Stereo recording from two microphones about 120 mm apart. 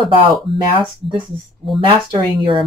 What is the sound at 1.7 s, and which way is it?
Speech, 45° right (ahead or behind).